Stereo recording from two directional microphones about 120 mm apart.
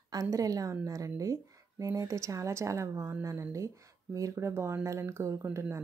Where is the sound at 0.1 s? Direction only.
30° right (ahead or behind).